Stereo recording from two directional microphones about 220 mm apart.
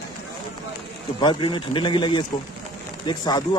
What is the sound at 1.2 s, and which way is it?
Speech, 20° left (ahead or behind).